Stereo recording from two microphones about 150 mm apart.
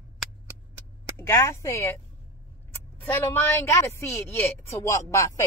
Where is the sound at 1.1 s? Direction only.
20° left (ahead or behind).